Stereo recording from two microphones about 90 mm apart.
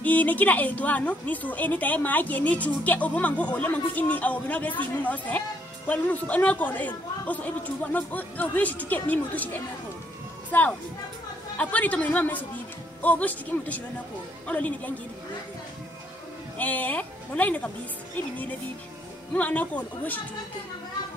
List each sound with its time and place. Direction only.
0.0 s a woman's voice: 20° left (ahead or behind)
11.5 s a woman's voice: 15° left (ahead or behind)
16.5 s a woman's voice: 20° left (ahead or behind)
19.3 s a woman's voice: 20° left (ahead or behind)